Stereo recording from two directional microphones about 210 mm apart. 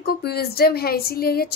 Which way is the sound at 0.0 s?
50° left (ahead or behind).